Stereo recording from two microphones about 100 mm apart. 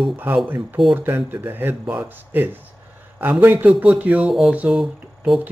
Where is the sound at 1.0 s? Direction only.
20° right (ahead or behind).